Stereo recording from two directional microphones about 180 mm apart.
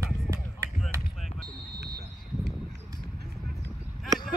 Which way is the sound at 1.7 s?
65° right (ahead or behind).